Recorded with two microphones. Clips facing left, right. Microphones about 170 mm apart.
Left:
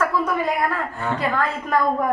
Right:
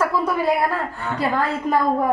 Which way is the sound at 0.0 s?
30° right (ahead or behind).